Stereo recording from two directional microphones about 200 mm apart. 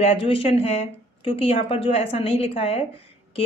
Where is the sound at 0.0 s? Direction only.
30° left (ahead or behind).